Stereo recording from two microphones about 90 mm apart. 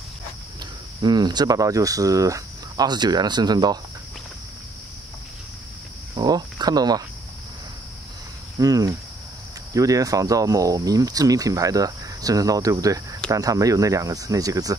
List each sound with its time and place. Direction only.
1.0 s speech: 50° right (ahead or behind)
2.9 s speech: 50° right (ahead or behind)
6.1 s a sound: 50° right (ahead or behind)
8.5 s speech: 40° right (ahead or behind)